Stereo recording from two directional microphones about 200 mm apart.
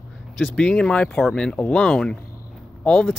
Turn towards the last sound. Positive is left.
turn(degrees=5)  # may be behind; listen again after turning